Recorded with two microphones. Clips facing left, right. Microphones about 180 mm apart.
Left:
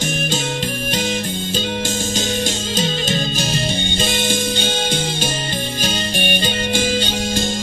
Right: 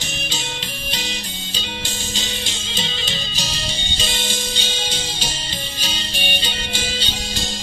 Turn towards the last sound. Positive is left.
turn(degrees=50)  # may be behind; listen again after turning